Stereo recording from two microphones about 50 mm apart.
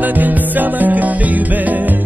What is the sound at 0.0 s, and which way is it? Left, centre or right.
Music, right.